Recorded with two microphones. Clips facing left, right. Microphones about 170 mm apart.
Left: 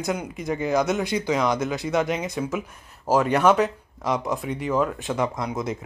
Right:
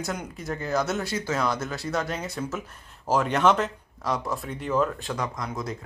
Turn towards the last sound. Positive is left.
turn(degrees=25)  # may be behind; listen again after turning